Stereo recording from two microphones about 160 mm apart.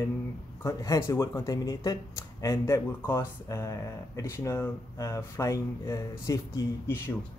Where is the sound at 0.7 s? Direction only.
20° left (ahead or behind).